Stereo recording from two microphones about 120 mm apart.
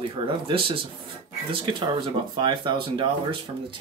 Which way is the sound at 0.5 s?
45° right (ahead or behind).